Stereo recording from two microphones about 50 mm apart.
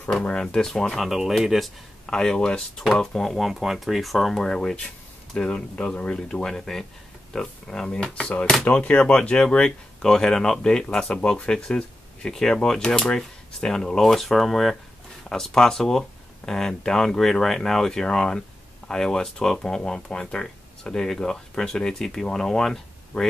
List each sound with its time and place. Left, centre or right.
0.1 s speech: centre
0.7 s speech: centre
1.0 s speech: centre
2.0 s speech: centre
2.8 s speech: centre
3.3 s speech: centre
4.4 s speech: centre
8.1 s speech: left
11.1 s speech: left